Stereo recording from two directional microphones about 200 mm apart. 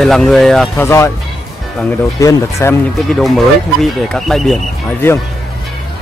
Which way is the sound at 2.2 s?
15° left (ahead or behind).